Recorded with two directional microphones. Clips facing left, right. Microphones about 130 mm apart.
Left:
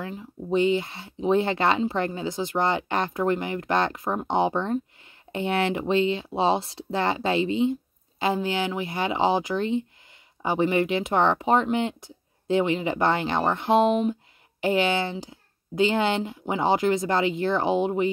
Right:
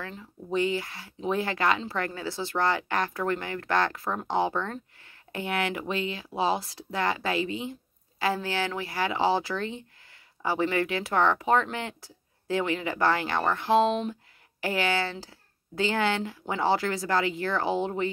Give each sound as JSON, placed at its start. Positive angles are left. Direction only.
{"t": 0.1, "sound": "speech", "side_deg": 20}